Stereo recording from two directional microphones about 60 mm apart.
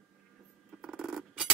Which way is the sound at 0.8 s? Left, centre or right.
Centre.